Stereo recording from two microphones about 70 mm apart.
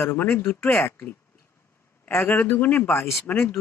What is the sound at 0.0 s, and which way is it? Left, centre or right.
Speech, left.